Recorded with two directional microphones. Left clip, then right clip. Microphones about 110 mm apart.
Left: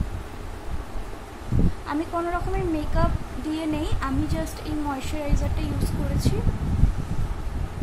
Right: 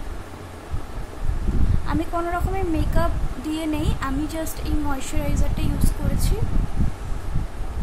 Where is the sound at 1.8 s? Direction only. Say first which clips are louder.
Right 2 dB; centre (ahead or behind).